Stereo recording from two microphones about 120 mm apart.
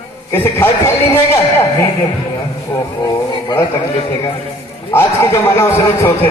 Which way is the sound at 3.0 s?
30° left (ahead or behind).